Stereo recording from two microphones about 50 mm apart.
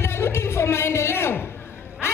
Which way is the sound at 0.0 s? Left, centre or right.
Left.